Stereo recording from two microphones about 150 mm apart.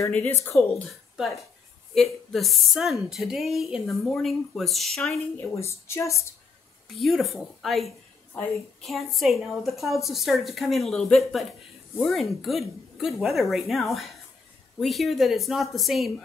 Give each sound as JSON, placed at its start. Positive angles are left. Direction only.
{"t": 0.3, "sound": "speech", "side_deg": 20}
{"t": 0.8, "sound": "a woman's voice", "side_deg": 0}
{"t": 5.6, "sound": "a woman's voice", "side_deg": 20}
{"t": 7.0, "sound": "a woman's voice", "side_deg": 0}